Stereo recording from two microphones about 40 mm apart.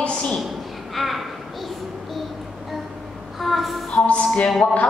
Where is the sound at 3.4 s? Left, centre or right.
Centre.